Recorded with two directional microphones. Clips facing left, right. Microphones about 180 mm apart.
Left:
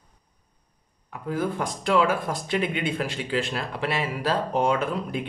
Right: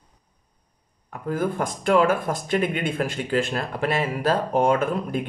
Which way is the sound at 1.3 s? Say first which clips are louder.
Right 2 dB; 50° right (ahead or behind).